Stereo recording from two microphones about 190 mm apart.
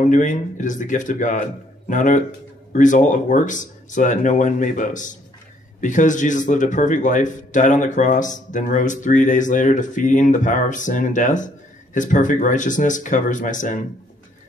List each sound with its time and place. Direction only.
0.0 s speech: 40° left (ahead or behind)